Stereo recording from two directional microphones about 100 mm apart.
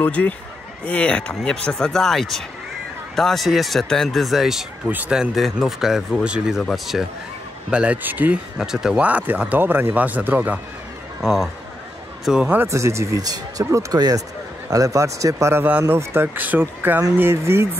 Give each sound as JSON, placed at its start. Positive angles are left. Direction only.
{"t": 0.0, "sound": "speech", "side_deg": 15}
{"t": 4.8, "sound": "speech", "side_deg": -15}
{"t": 7.7, "sound": "speech", "side_deg": -10}
{"t": 11.2, "sound": "speech", "side_deg": -5}
{"t": 12.6, "sound": "speech", "side_deg": -30}